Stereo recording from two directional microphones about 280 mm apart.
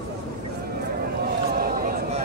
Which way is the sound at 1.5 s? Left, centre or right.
Right.